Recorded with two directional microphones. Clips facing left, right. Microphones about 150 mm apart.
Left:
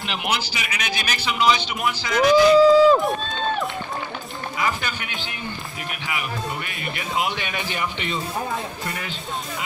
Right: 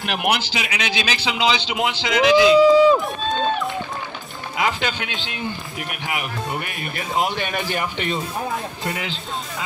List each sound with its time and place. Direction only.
0.0 s speech: 55° right (ahead or behind)
0.5 s a man's voice: 75° right (ahead or behind)
2.5 s speech: 5° right (ahead or behind)
4.6 s speech: 85° right
6.0 s speech: 55° right (ahead or behind)
7.2 s speech: 40° right (ahead or behind)
8.8 s a man's voice: 90° right